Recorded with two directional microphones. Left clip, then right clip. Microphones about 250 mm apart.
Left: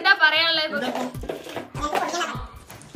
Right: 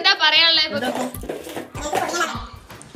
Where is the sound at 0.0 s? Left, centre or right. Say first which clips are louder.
Right 2 dB; centre.